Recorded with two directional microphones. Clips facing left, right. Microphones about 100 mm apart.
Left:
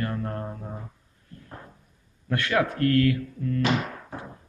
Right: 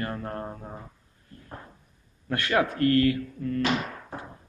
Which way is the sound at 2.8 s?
90° left.